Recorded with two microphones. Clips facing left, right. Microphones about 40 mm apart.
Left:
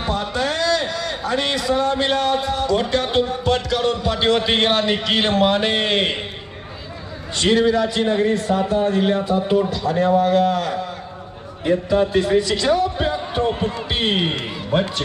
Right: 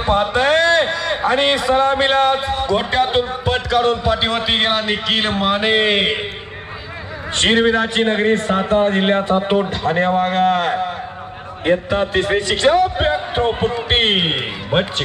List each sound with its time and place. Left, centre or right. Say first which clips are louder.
0.0 s a man's voice: right 6 dB; right; by 6.2 s centre
7.3 s a man's voice: right 2 dB; right